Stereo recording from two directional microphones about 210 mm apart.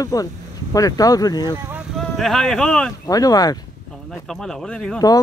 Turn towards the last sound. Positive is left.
turn(degrees=5)  # may be behind; listen again after turning